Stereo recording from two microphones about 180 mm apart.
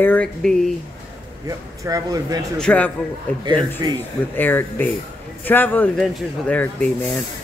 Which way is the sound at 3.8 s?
25° right (ahead or behind).